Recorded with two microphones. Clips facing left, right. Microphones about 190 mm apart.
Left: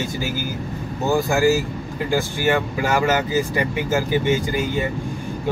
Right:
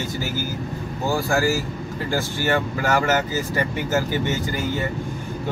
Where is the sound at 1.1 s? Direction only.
20° left (ahead or behind).